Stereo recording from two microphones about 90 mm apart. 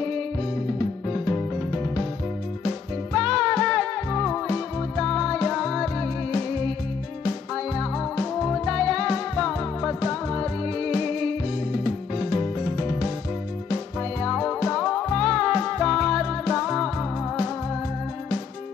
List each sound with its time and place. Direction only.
3.1 s music: 5° left (ahead or behind)
7.5 s music: 10° left (ahead or behind)
14.2 s music: 15° left (ahead or behind)